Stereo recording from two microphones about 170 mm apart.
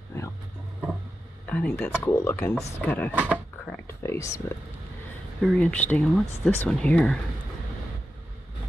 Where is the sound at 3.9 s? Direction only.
15° left (ahead or behind).